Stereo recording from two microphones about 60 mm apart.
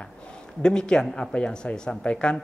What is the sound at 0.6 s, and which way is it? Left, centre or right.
Speech, centre.